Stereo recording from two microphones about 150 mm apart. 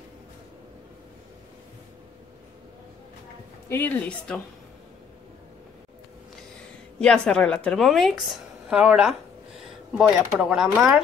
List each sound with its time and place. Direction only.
3.6 s a woman's voice: 15° left (ahead or behind)
7.0 s a woman's voice: 5° left (ahead or behind)